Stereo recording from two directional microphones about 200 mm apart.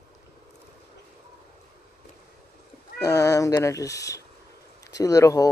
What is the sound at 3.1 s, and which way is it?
Speech, 15° left (ahead or behind).